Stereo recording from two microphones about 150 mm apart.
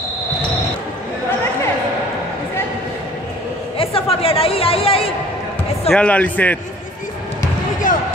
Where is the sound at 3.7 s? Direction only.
40° left (ahead or behind).